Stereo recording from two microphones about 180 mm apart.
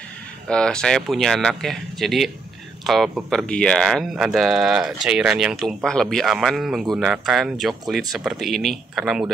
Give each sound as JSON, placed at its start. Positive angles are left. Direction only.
{"t": 0.5, "sound": "speech", "side_deg": 5}